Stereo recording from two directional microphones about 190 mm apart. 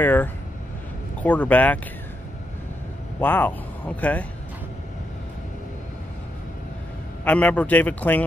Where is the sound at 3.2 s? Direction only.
10° left (ahead or behind).